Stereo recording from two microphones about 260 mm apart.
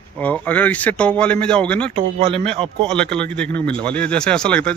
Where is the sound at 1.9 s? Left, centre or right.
Right.